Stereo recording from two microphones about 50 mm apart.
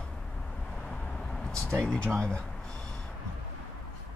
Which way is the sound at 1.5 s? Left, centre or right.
Centre.